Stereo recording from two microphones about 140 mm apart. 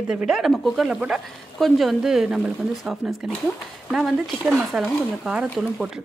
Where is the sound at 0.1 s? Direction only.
5° right (ahead or behind).